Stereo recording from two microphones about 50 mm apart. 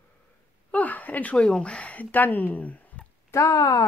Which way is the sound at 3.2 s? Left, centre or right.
Left.